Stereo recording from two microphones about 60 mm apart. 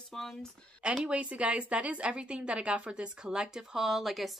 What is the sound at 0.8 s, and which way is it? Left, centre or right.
A woman's voice, centre.